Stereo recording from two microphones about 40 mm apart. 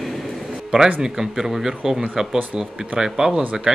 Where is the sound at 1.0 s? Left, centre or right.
Centre.